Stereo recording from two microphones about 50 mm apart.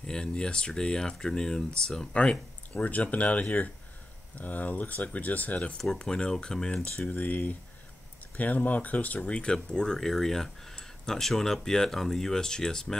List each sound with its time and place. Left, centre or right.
0.0 s speech: centre
2.7 s speech: left
5.8 s speech: centre
7.1 s speech: left
9.2 s speech: centre